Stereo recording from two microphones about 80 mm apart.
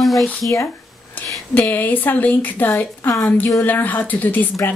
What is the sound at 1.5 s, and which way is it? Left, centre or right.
A woman's voice, left.